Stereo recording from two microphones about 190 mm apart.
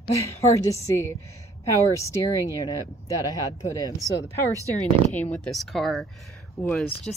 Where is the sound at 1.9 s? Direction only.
15° left (ahead or behind).